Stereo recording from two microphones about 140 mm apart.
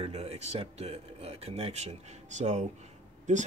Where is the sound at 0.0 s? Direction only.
50° right (ahead or behind).